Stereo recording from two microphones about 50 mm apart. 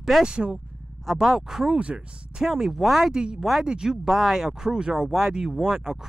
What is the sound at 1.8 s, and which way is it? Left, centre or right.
Speech, right.